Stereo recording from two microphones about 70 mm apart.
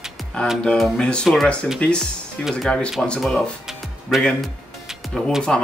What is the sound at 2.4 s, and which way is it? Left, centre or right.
Speech, centre.